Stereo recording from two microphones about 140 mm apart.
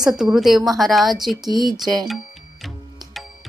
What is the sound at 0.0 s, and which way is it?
A woman's voice, 5° right (ahead or behind).